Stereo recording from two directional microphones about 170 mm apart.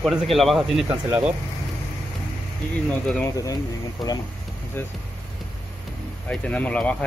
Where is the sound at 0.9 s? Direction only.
10° right (ahead or behind).